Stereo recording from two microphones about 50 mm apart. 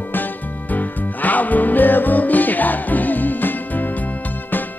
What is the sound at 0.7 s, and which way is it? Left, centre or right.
Music, left.